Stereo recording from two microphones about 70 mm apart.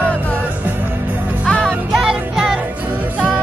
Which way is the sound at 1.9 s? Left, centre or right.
Centre.